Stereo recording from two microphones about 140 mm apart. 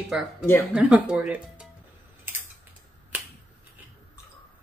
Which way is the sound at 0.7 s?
10° right (ahead or behind).